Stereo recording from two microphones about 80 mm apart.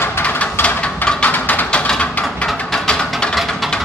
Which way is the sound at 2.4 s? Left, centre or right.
Centre.